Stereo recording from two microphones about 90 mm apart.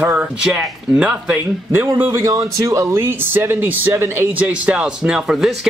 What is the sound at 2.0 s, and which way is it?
Speech, 35° right (ahead or behind).